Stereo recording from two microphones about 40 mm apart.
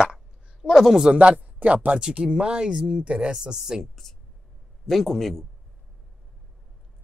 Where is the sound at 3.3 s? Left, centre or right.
Centre.